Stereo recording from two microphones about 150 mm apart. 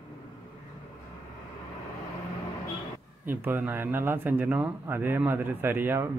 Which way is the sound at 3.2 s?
15° right (ahead or behind).